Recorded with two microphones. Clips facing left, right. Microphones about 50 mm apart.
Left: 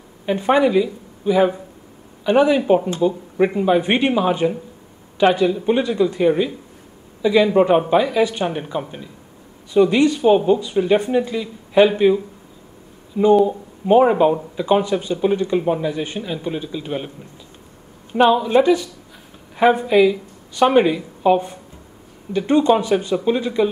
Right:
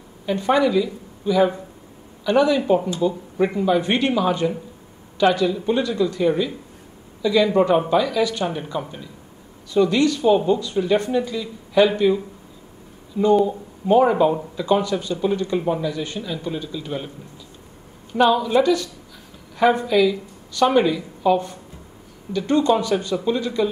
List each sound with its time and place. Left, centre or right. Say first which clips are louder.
0.3 s speech: left 2 dB; left
13.5 s speech: left 3 dB; left
18.1 s speech: left 3 dB; left